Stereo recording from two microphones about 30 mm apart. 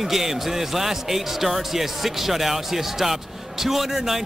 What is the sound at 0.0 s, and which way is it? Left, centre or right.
A man's voice, centre.